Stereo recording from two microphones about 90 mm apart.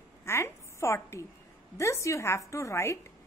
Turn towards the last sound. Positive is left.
turn(degrees=30)  # may be behind; listen again after turning